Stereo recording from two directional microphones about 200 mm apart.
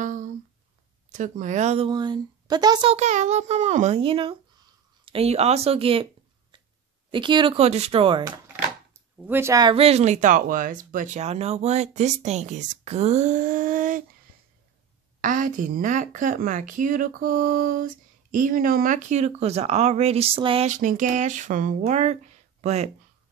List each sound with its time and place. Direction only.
0.0 s a sound: 40° right (ahead or behind)
1.1 s speech: 40° right (ahead or behind)
7.1 s speech: 25° right (ahead or behind)
8.9 s speech: 10° right (ahead or behind); by 14.0 s 40° right (ahead or behind)
15.1 s speech: 40° right (ahead or behind)